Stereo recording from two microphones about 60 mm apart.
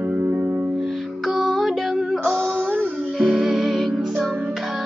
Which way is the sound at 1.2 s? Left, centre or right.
Centre.